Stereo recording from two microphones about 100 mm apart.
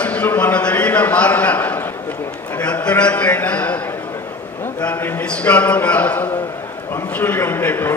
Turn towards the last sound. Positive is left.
turn(degrees=20)  # may be behind; listen again after turning